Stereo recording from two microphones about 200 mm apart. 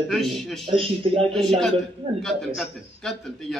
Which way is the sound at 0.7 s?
25° right (ahead or behind).